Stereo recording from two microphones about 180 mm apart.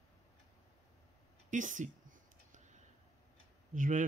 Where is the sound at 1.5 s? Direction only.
45° right (ahead or behind).